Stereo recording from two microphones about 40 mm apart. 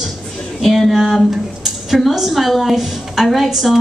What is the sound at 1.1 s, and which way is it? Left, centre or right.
A woman's voice, centre.